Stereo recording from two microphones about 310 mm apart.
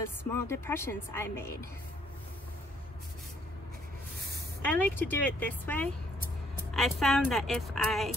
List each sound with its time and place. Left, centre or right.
0.3 s speech: centre
4.6 s speech: centre